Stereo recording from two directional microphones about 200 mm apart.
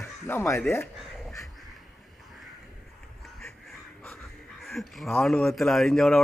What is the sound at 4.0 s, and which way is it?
Speech, centre (ahead or behind).